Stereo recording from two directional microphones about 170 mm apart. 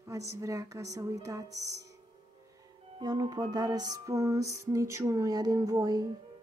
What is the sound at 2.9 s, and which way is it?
A woman's voice, 25° right (ahead or behind).